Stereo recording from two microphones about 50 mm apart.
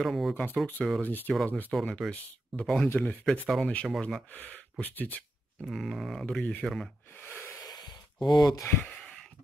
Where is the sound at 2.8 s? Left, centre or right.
Left.